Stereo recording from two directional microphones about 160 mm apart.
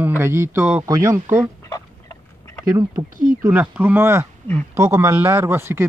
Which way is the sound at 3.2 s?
55° right (ahead or behind).